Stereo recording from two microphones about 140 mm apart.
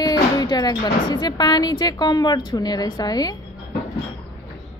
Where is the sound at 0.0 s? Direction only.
30° left (ahead or behind).